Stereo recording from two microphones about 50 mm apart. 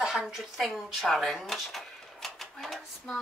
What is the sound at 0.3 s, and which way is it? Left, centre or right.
A woman's voice, centre.